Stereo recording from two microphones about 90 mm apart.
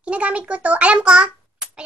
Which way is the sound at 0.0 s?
15° right (ahead or behind).